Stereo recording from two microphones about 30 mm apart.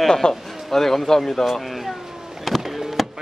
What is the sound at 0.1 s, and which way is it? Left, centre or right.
Speech, centre.